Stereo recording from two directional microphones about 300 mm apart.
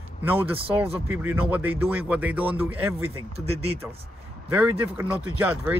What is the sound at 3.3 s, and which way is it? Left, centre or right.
Speech, centre.